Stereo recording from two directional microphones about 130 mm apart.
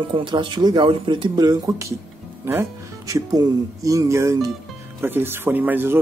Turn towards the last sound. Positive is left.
turn(degrees=-15)  # may be behind; listen again after turning